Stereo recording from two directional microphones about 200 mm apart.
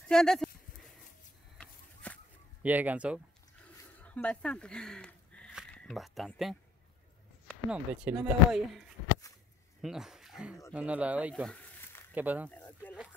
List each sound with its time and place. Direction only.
0.1 s speech: centre (ahead or behind)
2.0 s a sound: 5° left (ahead or behind)
2.6 s speech: 10° right (ahead or behind)
4.0 s speech: 5° left (ahead or behind)